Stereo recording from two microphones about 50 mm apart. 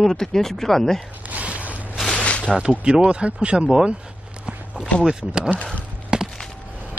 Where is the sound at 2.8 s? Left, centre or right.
Right.